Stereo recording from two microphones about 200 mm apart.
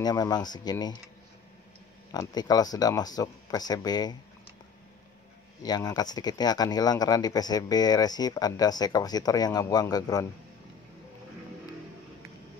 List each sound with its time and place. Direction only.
0.0 s speech: 20° left (ahead or behind)
2.1 s speech: 20° left (ahead or behind)
5.6 s speech: 20° left (ahead or behind)